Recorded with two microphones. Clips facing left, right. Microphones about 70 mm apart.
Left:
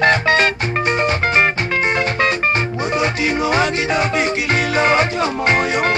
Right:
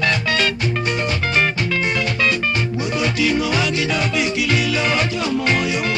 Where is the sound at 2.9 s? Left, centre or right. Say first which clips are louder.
Even; left.